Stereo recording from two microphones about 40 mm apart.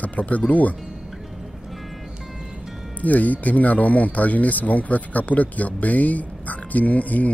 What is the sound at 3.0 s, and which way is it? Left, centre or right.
Speech, left.